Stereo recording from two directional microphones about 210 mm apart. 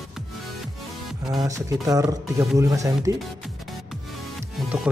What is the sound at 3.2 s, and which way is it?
Music, centre (ahead or behind).